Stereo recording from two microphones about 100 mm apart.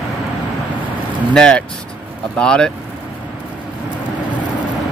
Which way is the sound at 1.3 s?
5° left (ahead or behind).